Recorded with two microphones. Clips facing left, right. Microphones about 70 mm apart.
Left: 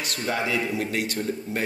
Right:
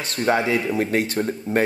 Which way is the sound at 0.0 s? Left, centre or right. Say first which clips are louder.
Right 7 dB; right.